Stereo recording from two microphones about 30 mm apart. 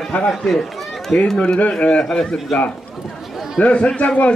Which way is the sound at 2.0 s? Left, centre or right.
Centre.